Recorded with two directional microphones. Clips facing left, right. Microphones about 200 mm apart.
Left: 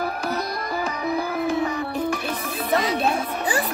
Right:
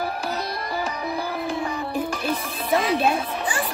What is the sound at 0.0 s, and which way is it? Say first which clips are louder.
Music: left 1 dB; 30° right (ahead or behind).